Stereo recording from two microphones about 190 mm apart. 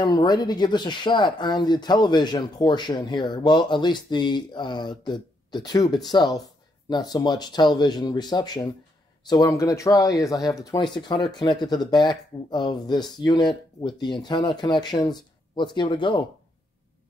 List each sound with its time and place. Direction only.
0.0 s speech: 20° left (ahead or behind)